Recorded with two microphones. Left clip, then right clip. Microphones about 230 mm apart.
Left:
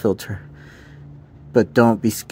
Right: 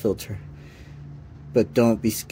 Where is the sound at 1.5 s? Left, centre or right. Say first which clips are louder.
Left 4 dB; left.